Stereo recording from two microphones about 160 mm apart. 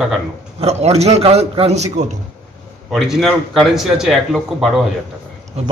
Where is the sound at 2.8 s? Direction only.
Centre (ahead or behind).